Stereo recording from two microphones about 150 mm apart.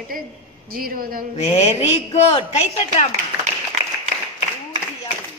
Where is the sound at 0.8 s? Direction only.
75° right (ahead or behind).